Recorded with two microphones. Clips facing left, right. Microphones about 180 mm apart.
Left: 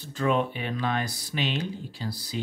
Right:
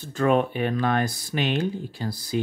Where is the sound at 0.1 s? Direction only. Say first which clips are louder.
Right 4 dB; 50° right (ahead or behind).